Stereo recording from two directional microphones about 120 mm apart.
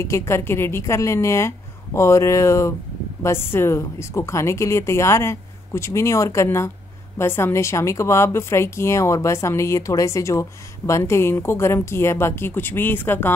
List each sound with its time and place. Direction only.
0.0 s a woman's voice: 25° left (ahead or behind)